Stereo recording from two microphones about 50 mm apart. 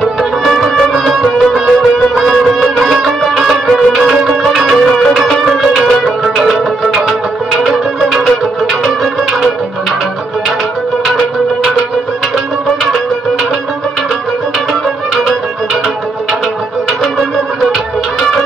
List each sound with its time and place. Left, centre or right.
0.5 s music: centre
4.8 s music: centre
11.1 s music: centre